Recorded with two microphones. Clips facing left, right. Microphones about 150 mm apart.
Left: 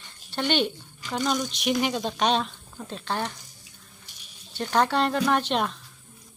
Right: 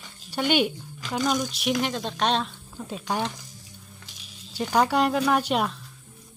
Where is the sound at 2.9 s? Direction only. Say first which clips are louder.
Right 2 dB; 10° right (ahead or behind).